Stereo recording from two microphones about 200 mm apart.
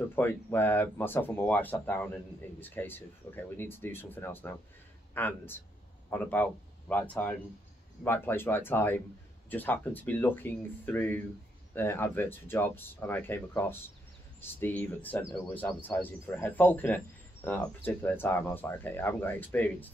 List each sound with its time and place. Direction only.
0.1 s speech: 10° left (ahead or behind)